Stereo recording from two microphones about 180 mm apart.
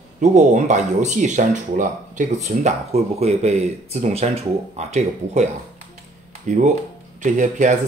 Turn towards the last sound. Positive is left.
turn(degrees=-40)  # may be behind; listen again after turning